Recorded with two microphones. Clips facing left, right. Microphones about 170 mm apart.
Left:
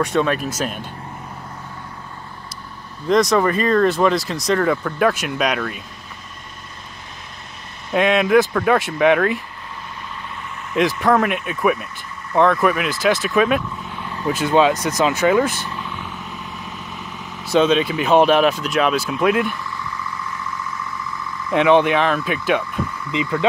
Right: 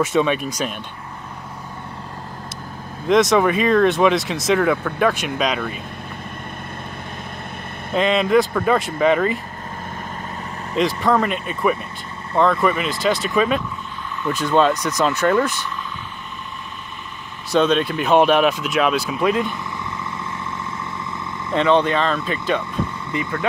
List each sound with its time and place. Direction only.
0.0 s speech: centre (ahead or behind)
3.1 s speech: centre (ahead or behind)
7.9 s speech: 5° left (ahead or behind)
10.8 s speech: centre (ahead or behind)
17.5 s speech: 5° left (ahead or behind)
19.4 s vehicle: 25° right (ahead or behind)
21.5 s speech: 10° left (ahead or behind)